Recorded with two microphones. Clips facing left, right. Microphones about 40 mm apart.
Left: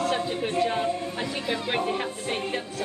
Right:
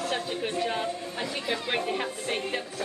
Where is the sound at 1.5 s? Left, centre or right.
Centre.